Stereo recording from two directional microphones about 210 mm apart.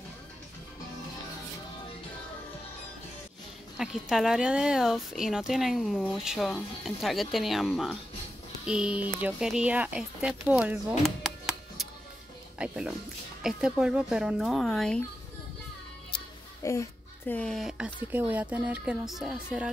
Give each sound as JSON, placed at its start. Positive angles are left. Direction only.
{"t": 3.7, "sound": "speech", "side_deg": -5}
{"t": 16.6, "sound": "speech", "side_deg": 15}
{"t": 17.3, "sound": "speech", "side_deg": 5}